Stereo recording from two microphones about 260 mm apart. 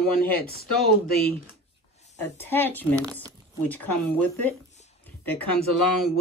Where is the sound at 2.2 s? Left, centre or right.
Centre.